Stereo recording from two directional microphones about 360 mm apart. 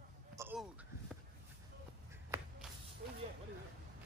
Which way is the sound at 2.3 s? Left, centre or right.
Centre.